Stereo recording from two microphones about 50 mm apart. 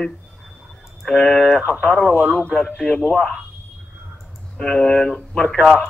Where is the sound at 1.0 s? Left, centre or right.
Centre.